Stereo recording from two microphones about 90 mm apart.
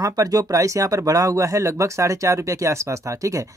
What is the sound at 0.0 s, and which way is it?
Speech, 40° right (ahead or behind).